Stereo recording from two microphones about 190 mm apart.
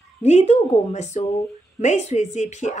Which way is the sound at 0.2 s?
35° left (ahead or behind).